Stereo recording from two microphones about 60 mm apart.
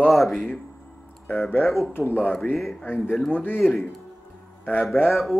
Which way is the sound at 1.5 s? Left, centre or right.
Left.